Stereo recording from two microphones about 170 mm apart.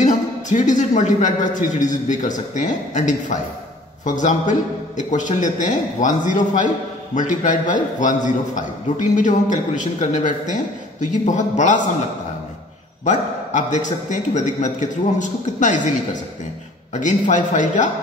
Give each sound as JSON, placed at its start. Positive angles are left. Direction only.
{"t": 0.0, "sound": "a man's voice", "side_deg": 45}